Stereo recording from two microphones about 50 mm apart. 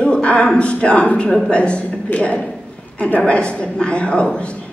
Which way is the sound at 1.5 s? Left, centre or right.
Left.